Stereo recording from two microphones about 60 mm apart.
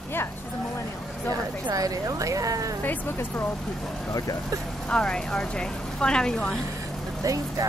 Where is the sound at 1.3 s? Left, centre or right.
Right.